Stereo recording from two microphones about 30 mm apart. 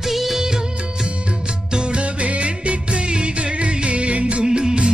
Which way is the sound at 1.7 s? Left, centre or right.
Right.